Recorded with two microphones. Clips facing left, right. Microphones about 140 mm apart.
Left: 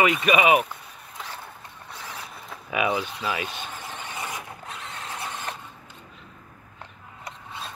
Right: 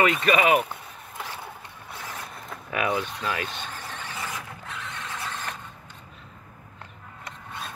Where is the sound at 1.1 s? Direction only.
5° right (ahead or behind).